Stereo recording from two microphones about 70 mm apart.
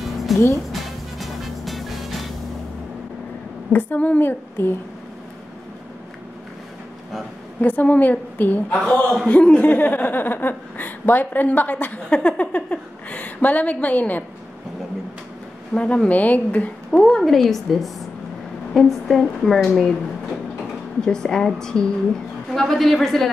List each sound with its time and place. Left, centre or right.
0.0 s music: centre
3.7 s a woman's voice: left
7.6 s a woman's voice: left
9.6 s a woman's voice: left
15.7 s a woman's voice: centre
17.0 s a woman's voice: centre
21.0 s a woman's voice: centre